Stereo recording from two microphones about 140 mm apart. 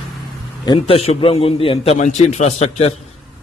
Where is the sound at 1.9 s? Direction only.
55° left (ahead or behind).